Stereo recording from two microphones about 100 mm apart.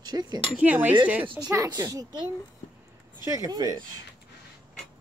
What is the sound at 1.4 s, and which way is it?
Speech, 40° right (ahead or behind).